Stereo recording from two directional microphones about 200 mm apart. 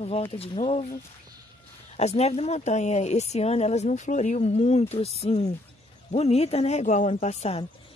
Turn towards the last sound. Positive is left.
turn(degrees=35)  # may be behind; listen again after turning